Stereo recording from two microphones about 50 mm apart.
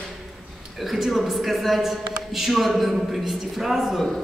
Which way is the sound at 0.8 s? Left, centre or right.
Centre.